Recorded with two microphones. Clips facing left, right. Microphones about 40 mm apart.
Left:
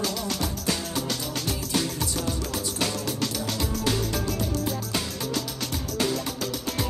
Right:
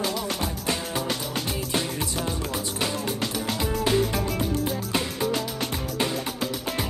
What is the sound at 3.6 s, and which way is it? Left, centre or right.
Music, right.